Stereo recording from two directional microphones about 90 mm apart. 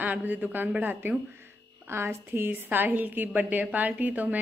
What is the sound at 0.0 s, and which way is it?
A woman's voice, 20° right (ahead or behind).